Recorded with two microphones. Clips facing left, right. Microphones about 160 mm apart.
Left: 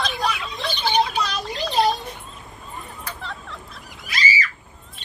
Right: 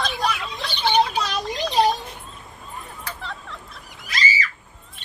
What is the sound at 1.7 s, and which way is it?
Children playing, 15° right (ahead or behind).